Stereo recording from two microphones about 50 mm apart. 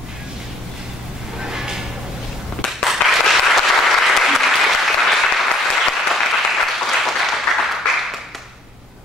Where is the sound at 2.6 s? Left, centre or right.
Left.